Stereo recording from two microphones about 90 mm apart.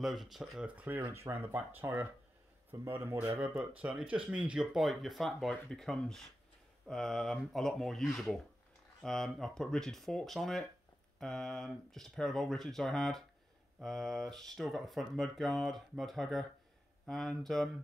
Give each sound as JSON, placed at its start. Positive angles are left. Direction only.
{"t": 0.0, "sound": "speech", "side_deg": 0}
{"t": 0.7, "sound": "speech", "side_deg": -20}
{"t": 3.3, "sound": "speech", "side_deg": -10}